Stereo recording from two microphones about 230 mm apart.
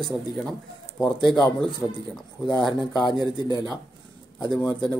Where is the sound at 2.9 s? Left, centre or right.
Centre.